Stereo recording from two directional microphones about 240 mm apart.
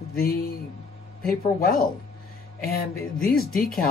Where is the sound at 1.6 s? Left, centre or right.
Left.